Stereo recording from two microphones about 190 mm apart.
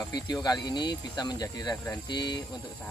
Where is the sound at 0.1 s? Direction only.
20° left (ahead or behind).